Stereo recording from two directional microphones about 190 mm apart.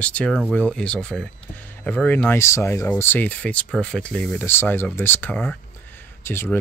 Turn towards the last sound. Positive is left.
turn(degrees=10)  # may be behind; listen again after turning